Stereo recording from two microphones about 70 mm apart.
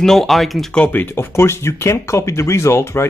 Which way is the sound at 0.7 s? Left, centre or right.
Left.